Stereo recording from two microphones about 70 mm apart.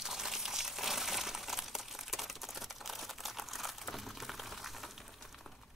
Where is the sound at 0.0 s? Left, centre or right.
Centre.